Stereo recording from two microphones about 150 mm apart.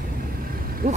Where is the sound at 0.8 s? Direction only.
45° right (ahead or behind).